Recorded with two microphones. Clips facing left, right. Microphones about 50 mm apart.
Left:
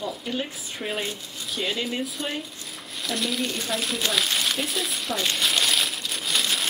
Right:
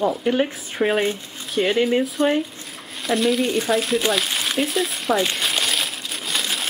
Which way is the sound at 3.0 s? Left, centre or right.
Centre.